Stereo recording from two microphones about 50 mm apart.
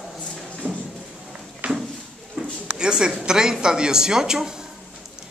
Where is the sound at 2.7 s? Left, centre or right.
Centre.